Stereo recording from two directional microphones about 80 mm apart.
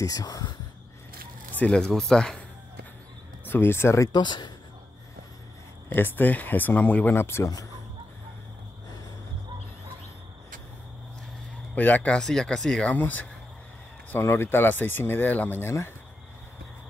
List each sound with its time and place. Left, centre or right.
0.0 s speech: left
1.6 s speech: centre
3.4 s speech: left
4.1 s speech: left
5.9 s speech: left
11.7 s speech: left
12.2 s speech: centre
12.9 s speech: left
14.2 s speech: left